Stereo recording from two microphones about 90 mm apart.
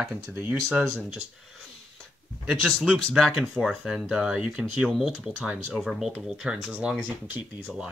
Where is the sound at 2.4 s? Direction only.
Centre (ahead or behind).